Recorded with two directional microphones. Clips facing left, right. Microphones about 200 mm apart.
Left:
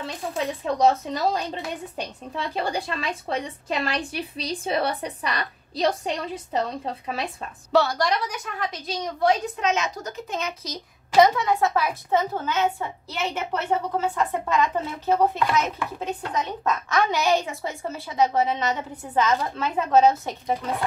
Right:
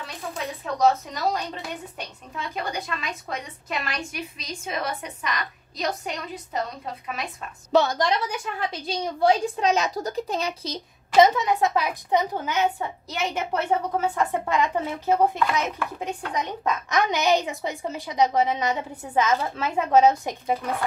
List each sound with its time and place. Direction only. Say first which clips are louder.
0.0 s a woman's voice: left 4 dB; 30° left (ahead or behind)
7.7 s a woman's voice: even; 20° right (ahead or behind)
14.1 s speech: even; 15° right (ahead or behind)